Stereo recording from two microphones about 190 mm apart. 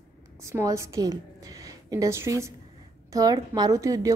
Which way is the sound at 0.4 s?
15° right (ahead or behind).